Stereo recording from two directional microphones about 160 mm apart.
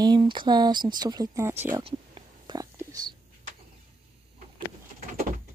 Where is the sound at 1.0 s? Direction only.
25° right (ahead or behind).